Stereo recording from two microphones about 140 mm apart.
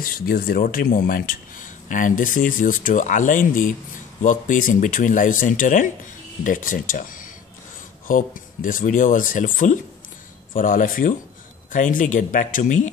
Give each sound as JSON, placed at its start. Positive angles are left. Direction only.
{"t": 0.0, "sound": "speech", "side_deg": 90}